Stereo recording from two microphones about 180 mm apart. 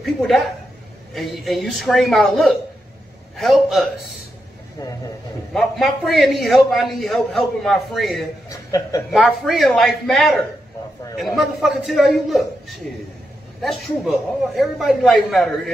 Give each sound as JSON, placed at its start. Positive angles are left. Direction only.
{"t": 0.0, "sound": "a woman's voice", "side_deg": 0}
{"t": 5.5, "sound": "a man's voice", "side_deg": 0}
{"t": 8.5, "sound": "a man's voice", "side_deg": 20}
{"t": 9.1, "sound": "a man's voice", "side_deg": 0}